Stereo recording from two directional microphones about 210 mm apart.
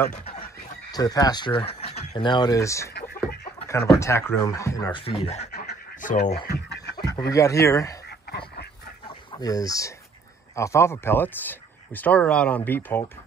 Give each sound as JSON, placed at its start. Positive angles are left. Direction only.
{"t": 0.1, "sound": "speech", "side_deg": 30}
{"t": 0.9, "sound": "speech", "side_deg": 20}
{"t": 4.0, "sound": "speech", "side_deg": 10}
{"t": 5.0, "sound": "speech", "side_deg": 30}
{"t": 5.5, "sound": "duck", "side_deg": 45}
{"t": 6.4, "sound": "a sound", "side_deg": 50}
{"t": 7.3, "sound": "speech", "side_deg": 15}
{"t": 8.3, "sound": "a sound", "side_deg": 50}
{"t": 9.0, "sound": "chicken", "side_deg": 20}
{"t": 10.5, "sound": "speech", "side_deg": 15}